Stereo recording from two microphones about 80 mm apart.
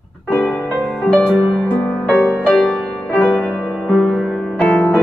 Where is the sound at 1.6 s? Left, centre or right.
Centre.